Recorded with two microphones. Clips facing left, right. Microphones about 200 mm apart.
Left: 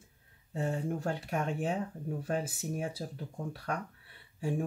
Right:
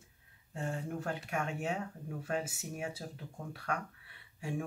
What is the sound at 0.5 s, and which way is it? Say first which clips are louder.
Speech: left 5 dB; 35° left (ahead or behind).